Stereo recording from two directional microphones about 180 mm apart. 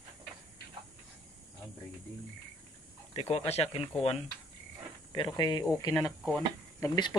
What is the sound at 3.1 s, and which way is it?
Speech, 35° left (ahead or behind).